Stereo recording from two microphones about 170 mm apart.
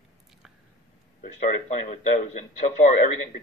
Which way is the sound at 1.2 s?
45° left (ahead or behind).